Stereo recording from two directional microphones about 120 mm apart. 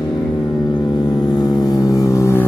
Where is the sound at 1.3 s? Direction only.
35° left (ahead or behind).